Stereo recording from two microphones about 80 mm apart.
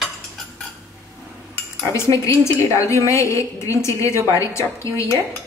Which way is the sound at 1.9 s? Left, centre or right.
Left.